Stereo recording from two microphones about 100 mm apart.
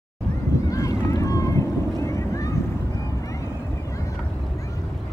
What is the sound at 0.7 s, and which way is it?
Boat, 35° left (ahead or behind).